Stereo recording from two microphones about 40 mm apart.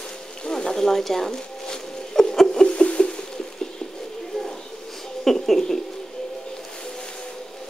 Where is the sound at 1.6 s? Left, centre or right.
Centre.